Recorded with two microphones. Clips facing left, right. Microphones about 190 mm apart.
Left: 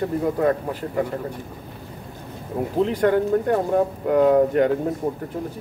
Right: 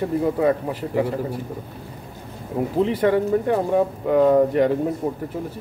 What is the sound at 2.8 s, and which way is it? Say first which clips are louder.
Speech: even; 5° right (ahead or behind).